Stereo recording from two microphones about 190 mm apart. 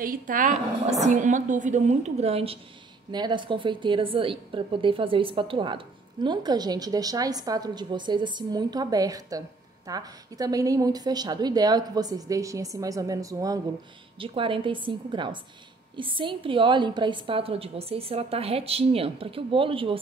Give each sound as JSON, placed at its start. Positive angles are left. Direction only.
{"t": 0.0, "sound": "a woman's voice", "side_deg": -45}